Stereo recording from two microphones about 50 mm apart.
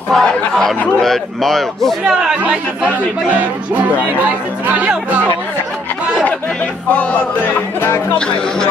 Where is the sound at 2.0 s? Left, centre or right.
Centre.